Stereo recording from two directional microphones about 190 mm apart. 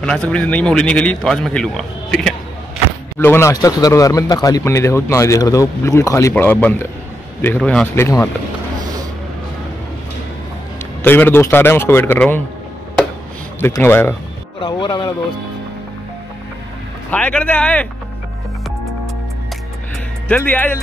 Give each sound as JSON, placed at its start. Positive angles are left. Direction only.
{"t": 0.0, "sound": "speech", "side_deg": 5}
{"t": 11.0, "sound": "speech", "side_deg": 10}
{"t": 13.6, "sound": "speech", "side_deg": 15}
{"t": 14.6, "sound": "speech", "side_deg": 25}
{"t": 17.1, "sound": "speech", "side_deg": 5}
{"t": 20.2, "sound": "speech", "side_deg": 10}